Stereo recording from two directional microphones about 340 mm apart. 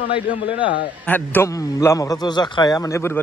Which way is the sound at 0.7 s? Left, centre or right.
Centre.